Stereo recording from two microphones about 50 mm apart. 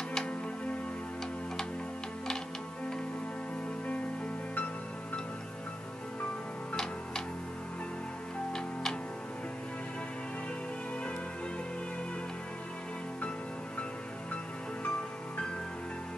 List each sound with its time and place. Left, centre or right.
14.9 s music: centre